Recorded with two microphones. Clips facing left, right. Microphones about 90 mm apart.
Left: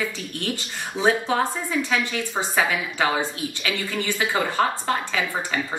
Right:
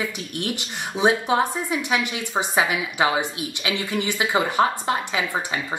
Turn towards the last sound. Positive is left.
turn(degrees=-20)  # may be behind; listen again after turning